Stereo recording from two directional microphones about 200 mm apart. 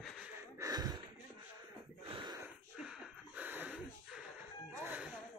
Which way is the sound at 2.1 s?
20° right (ahead or behind).